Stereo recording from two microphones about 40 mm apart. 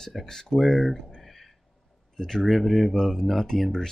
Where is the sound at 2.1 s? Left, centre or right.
Centre.